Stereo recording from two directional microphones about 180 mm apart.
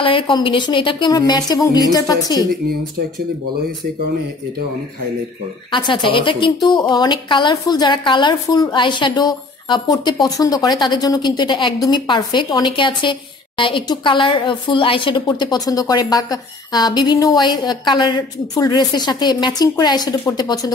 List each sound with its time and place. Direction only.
0.0 s a woman's voice: 30° left (ahead or behind)
5.7 s a woman's voice: 25° left (ahead or behind)